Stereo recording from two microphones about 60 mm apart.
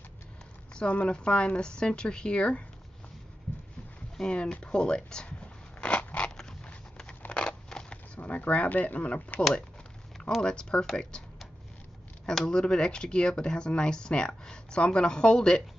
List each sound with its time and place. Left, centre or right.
0.7 s speech: centre
4.2 s speech: centre
5.8 s scissors: centre
6.3 s a sound: centre
10.1 s speech: centre
12.3 s speech: centre